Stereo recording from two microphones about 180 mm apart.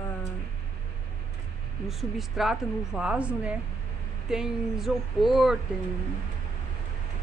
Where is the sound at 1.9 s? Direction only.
Centre (ahead or behind).